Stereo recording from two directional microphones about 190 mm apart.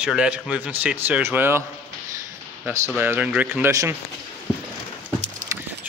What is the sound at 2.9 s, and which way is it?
Speech, 10° right (ahead or behind).